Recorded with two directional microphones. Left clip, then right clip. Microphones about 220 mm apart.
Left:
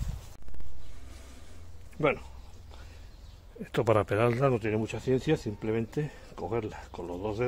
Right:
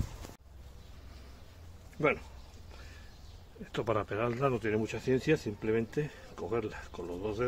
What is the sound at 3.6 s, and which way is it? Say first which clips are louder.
Speech: left 7 dB; 35° left (ahead or behind).